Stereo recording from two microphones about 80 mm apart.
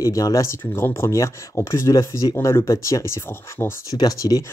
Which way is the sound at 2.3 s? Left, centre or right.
Left.